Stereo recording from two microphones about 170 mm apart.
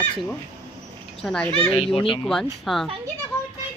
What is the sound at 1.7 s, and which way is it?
Speech, 35° left (ahead or behind).